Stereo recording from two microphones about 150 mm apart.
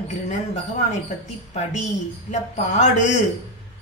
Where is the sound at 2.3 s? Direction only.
50° left (ahead or behind).